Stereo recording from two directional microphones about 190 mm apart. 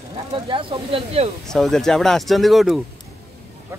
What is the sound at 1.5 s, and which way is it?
Speech, centre (ahead or behind).